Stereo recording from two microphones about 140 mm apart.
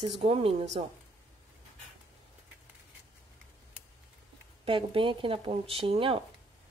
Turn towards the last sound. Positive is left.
turn(degrees=-40)  # may be behind; listen again after turning